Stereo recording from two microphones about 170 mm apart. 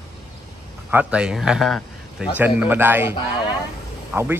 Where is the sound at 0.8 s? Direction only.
10° right (ahead or behind).